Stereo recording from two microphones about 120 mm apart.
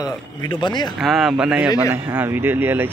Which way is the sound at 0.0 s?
35° left (ahead or behind).